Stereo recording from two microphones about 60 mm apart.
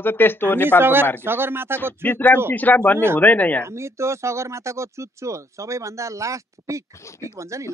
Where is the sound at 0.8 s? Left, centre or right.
Right.